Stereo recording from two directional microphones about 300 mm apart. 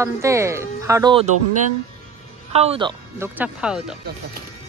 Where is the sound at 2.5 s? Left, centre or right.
Centre.